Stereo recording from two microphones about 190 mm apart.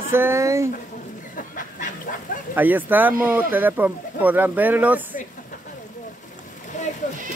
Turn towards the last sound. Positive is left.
turn(degrees=40)  # may be behind; listen again after turning